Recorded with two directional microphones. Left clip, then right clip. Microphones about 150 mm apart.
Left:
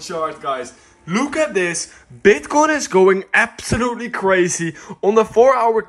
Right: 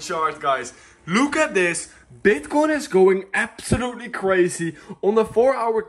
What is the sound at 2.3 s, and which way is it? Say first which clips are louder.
Speech: left 5 dB; 55° right (ahead or behind).